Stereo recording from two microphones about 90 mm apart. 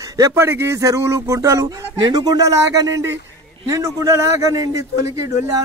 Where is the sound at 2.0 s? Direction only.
50° right (ahead or behind).